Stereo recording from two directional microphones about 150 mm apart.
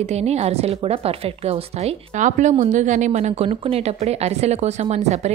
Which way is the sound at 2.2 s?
50° right (ahead or behind).